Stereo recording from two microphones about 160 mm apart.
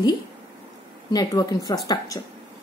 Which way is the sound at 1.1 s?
20° left (ahead or behind).